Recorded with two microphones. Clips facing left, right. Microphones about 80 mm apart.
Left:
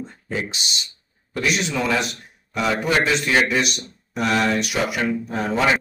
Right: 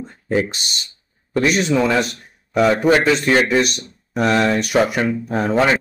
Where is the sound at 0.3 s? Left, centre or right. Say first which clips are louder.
Right 8 dB; right.